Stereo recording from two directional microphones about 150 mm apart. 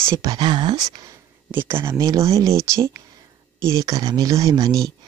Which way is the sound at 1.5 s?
15° right (ahead or behind).